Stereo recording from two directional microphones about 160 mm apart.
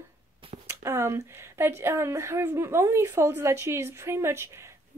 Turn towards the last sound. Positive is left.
turn(degrees=-15)  # may be behind; listen again after turning